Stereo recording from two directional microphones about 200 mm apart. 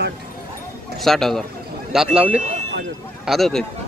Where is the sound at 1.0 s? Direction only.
Centre (ahead or behind).